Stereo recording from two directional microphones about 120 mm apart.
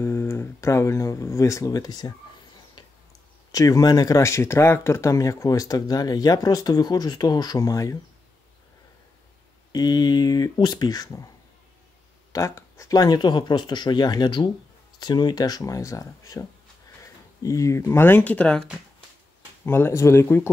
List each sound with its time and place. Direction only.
0.0 s guitar: 20° left (ahead or behind)
3.5 s speech: 30° left (ahead or behind)
9.7 s speech: 35° left (ahead or behind)
12.3 s speech: 25° left (ahead or behind)